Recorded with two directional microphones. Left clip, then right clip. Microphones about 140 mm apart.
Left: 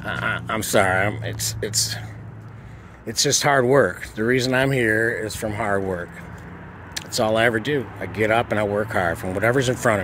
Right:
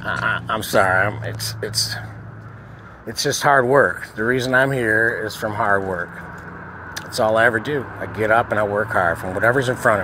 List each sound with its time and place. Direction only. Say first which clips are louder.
0.2 s speech: right 2 dB; 90° left
3.3 s speech: right 3 dB; 90° left
5.4 s speech: right 4 dB; 50° left (ahead or behind)
5.7 s speech: right 3 dB; 85° left